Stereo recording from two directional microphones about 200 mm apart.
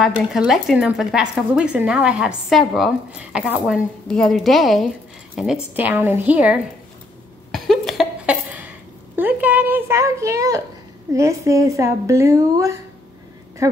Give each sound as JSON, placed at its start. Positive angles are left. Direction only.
{"t": 0.0, "sound": "a woman's voice", "side_deg": 0}
{"t": 7.5, "sound": "a sound", "side_deg": 0}
{"t": 11.1, "sound": "a woman's voice", "side_deg": -15}